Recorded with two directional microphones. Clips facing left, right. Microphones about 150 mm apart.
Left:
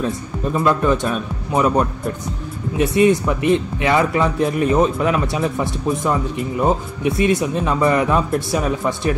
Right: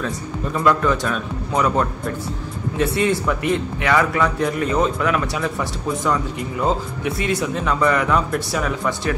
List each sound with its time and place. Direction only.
0.0 s speech: 20° left (ahead or behind)